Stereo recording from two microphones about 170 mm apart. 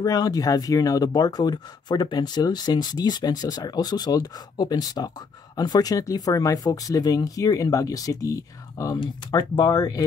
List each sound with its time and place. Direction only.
0.0 s speech: 20° left (ahead or behind)